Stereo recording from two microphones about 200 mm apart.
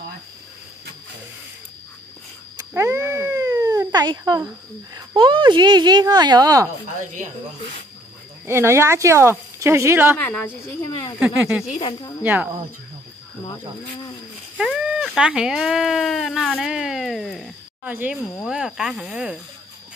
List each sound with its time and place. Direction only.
2.5 s cat: 15° right (ahead or behind)
4.9 s speech: 25° right (ahead or behind)
8.5 s speech: 15° right (ahead or behind)
10.1 s speech: 10° left (ahead or behind)
10.9 s speech: 20° left (ahead or behind)
11.1 s speech: 5° right (ahead or behind)
14.6 s speech: 5° right (ahead or behind)
18.2 s speech: 5° left (ahead or behind)